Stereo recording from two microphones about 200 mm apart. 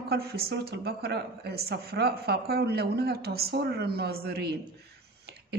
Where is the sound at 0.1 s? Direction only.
50° right (ahead or behind).